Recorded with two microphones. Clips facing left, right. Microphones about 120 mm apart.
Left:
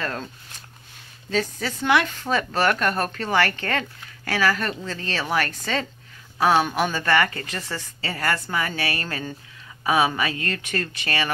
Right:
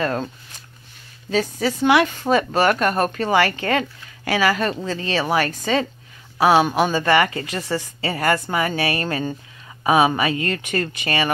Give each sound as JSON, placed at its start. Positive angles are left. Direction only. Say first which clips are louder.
{"t": 0.0, "sound": "speech", "louder": "right 7 dB", "side_deg": -20}
{"t": 1.3, "sound": "speech", "louder": "right 5 dB", "side_deg": -10}